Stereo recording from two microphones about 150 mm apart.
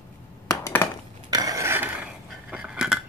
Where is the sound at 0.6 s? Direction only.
20° left (ahead or behind).